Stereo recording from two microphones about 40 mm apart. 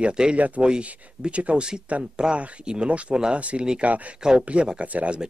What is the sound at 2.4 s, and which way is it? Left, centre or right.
Speech, right.